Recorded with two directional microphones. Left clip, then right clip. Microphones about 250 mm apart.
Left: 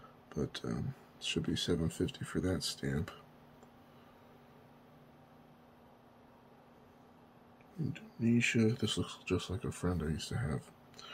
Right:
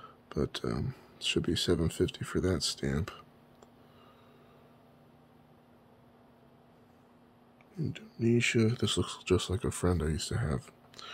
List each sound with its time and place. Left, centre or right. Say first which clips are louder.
0.3 s speech: right 6 dB; right
7.9 s speech: right 5 dB; right